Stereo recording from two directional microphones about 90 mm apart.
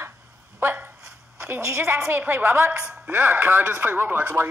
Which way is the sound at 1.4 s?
25° right (ahead or behind).